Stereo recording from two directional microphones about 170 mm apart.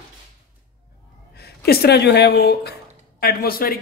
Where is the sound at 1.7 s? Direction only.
70° left (ahead or behind).